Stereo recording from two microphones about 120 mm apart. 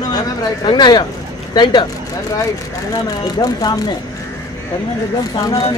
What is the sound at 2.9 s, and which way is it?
Speech, 30° left (ahead or behind).